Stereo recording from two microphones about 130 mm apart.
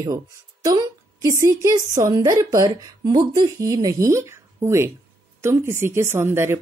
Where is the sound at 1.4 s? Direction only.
20° right (ahead or behind).